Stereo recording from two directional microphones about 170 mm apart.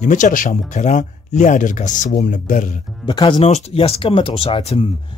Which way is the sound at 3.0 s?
25° left (ahead or behind).